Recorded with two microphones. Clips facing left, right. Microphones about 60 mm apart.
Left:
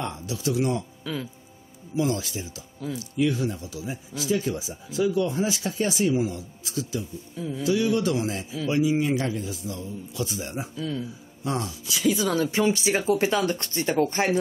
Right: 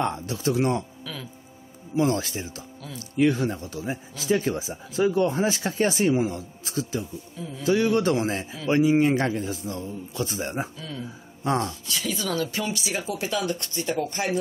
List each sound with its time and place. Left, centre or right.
0.0 s speech: right
1.1 s music: centre
2.0 s speech: right
10.8 s speech: centre
11.4 s speech: right
11.8 s speech: centre; by 14.4 s left